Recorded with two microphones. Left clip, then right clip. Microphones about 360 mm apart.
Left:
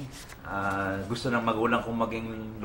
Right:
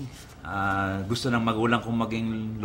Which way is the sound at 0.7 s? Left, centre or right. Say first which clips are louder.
Right 2 dB; right.